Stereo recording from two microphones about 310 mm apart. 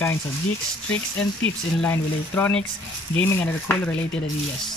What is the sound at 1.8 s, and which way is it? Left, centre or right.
Speech, centre.